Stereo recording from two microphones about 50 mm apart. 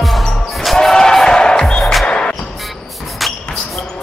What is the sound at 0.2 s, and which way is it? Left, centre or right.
Basketball bounce, centre.